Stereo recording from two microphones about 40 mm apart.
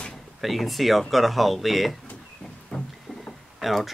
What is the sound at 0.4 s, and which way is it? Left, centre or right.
Speech, centre.